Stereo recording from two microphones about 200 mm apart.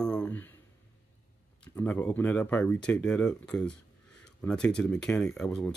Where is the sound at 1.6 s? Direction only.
10° left (ahead or behind).